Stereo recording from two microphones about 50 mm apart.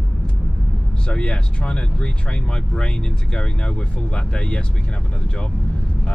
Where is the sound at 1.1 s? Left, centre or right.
Centre.